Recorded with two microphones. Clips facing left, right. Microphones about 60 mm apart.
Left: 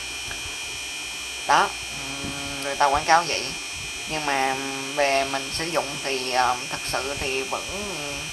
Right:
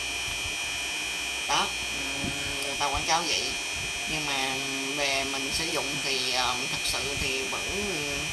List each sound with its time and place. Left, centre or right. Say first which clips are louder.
1.5 s speech: left 9 dB; left
2.8 s speech: left 10 dB; left
4.1 s hum: left 8 dB; left